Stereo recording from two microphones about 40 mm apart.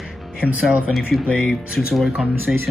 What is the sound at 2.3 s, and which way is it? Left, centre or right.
Speech, right.